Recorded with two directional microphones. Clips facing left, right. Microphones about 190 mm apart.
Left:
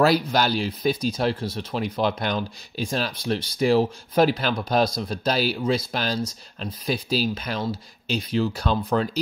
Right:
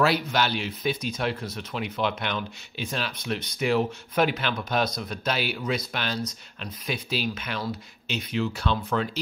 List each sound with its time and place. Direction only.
0.0 s speech: 40° left (ahead or behind)